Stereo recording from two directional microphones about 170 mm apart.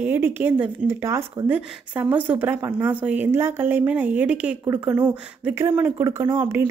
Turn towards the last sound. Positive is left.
turn(degrees=-15)  # may be behind; listen again after turning